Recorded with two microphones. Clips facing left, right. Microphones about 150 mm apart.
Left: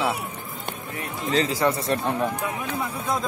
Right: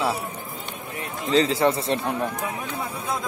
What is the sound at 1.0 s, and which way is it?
Speech, 30° right (ahead or behind).